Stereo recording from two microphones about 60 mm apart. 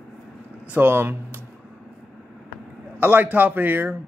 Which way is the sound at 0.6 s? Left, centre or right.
Right.